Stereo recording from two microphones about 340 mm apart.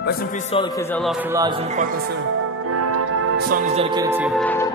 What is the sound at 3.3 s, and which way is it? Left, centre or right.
Speech, right.